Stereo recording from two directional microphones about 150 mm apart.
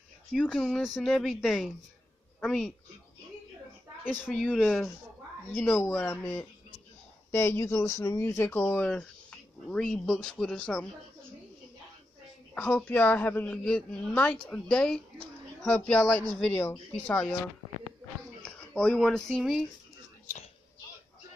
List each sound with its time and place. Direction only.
0.3 s speech: centre (ahead or behind)
4.3 s a woman's voice: 5° left (ahead or behind)
12.5 s a woman's voice: 10° left (ahead or behind)
18.7 s speech: 5° left (ahead or behind)